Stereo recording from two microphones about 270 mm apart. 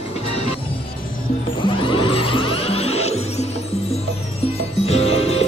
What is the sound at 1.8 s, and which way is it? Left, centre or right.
Music, centre.